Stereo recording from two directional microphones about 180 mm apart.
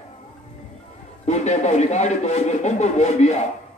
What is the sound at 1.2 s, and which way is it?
A man's voice, 40° left (ahead or behind).